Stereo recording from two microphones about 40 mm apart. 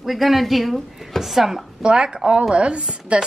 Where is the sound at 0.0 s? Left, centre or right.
Centre.